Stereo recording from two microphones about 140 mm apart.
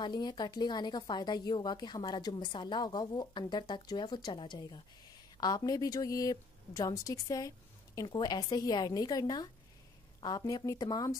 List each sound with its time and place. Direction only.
0.0 s a woman's voice: 30° left (ahead or behind)